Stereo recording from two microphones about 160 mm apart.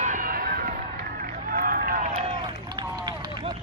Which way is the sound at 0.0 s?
60° right (ahead or behind).